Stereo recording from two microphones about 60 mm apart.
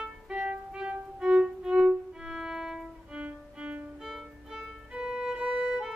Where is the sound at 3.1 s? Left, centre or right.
Centre.